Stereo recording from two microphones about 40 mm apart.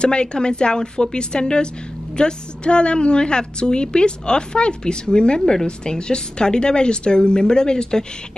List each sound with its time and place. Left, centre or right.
0.0 s a woman's voice: left